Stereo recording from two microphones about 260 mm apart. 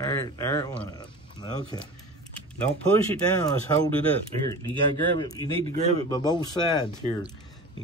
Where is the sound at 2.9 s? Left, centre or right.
Centre.